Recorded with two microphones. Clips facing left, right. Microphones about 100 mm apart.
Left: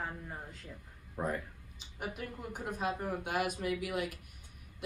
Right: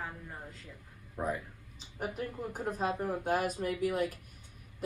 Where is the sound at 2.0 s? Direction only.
35° right (ahead or behind).